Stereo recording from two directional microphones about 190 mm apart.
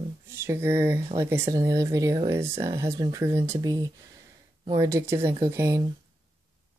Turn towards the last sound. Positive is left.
turn(degrees=-15)  # may be behind; listen again after turning